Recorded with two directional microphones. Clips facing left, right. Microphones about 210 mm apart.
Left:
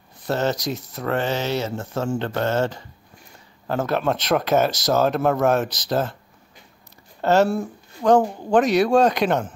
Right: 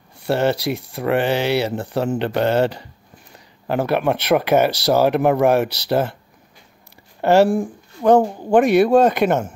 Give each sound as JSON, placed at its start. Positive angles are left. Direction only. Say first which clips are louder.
{"t": 0.2, "sound": "speech", "louder": "right 4 dB", "side_deg": -10}
{"t": 7.2, "sound": "speech", "louder": "right 4 dB", "side_deg": -15}